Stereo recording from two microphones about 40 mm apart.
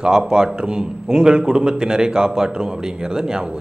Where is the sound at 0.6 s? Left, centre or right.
Centre.